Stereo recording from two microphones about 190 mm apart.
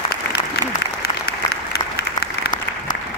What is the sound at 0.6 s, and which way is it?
Applause, 55° left (ahead or behind).